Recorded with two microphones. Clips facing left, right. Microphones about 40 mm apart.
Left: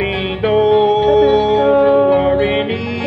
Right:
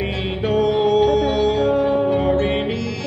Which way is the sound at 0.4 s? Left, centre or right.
Left.